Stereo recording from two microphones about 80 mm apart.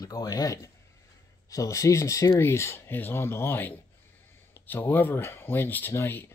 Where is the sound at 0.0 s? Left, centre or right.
Left.